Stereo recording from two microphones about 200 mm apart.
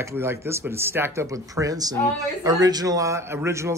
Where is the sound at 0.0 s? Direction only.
15° right (ahead or behind).